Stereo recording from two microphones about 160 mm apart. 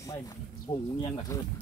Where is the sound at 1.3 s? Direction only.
20° left (ahead or behind).